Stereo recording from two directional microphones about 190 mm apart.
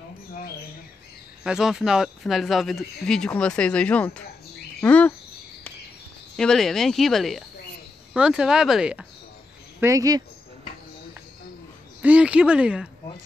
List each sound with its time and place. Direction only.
1.4 s speech: 5° right (ahead or behind)
4.7 s cricket: 5° left (ahead or behind)
6.3 s speech: 5° left (ahead or behind)
9.8 s speech: 15° right (ahead or behind)
12.0 s speech: 5° right (ahead or behind)